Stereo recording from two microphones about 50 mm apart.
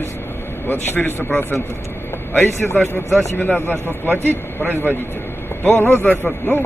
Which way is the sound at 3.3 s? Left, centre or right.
Left.